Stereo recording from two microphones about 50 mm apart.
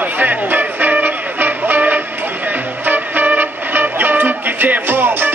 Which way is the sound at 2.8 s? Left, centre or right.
Right.